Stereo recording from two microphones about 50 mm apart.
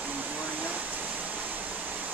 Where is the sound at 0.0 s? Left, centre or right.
Right.